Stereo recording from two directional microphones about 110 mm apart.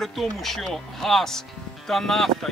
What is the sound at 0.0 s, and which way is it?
Speech, centre (ahead or behind).